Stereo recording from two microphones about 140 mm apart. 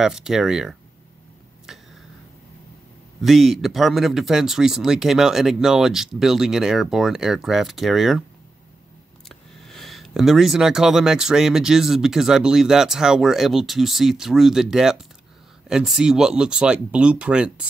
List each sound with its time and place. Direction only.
0.0 s speech: 5° right (ahead or behind)
1.7 s a sound: 5° right (ahead or behind)
3.2 s speech: centre (ahead or behind)
9.3 s speech: centre (ahead or behind)